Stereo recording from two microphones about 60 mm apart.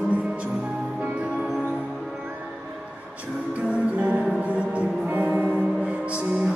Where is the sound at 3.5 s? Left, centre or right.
Right.